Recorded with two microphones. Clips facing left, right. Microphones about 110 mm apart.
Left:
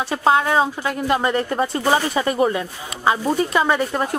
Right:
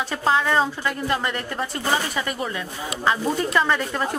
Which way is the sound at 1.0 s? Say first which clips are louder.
Left 9 dB; 20° left (ahead or behind).